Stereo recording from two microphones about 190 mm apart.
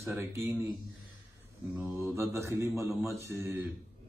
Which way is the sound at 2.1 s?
15° right (ahead or behind).